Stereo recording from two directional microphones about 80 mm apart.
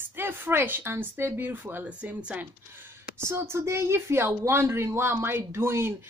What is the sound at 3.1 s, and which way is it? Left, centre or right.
Speech, right.